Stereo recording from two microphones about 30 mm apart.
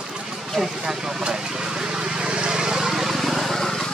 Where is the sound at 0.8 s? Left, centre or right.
Centre.